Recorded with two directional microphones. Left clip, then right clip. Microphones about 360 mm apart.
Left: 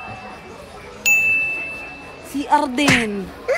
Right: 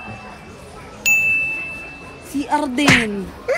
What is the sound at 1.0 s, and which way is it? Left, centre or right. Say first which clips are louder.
Ding: even; centre.